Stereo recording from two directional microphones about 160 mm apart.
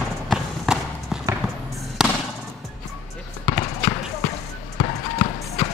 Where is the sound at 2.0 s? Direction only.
Centre (ahead or behind).